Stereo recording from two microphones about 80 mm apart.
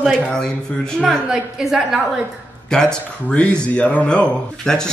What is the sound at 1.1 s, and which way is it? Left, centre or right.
Speech, centre.